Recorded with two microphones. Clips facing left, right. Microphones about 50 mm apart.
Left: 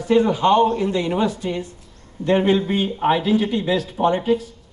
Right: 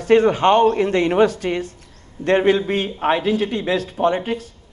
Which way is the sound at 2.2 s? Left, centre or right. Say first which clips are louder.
Right 1 dB; right.